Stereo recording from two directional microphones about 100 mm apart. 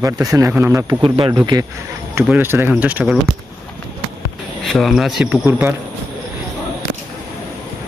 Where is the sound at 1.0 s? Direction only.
60° right (ahead or behind).